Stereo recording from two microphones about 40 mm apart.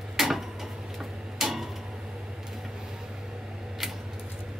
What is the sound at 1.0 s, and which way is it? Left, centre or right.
Tick-tock, centre.